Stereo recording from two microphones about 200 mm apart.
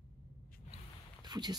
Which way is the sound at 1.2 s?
20° right (ahead or behind).